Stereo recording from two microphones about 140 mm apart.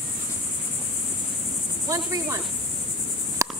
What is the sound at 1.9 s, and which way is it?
Cricket, 20° right (ahead or behind).